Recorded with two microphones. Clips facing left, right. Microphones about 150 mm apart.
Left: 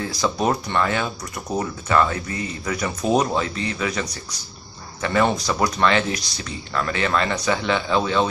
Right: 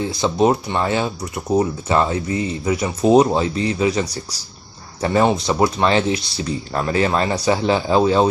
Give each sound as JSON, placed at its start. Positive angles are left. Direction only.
{"t": 0.0, "sound": "speech", "side_deg": -25}
{"t": 5.5, "sound": "speech", "side_deg": -25}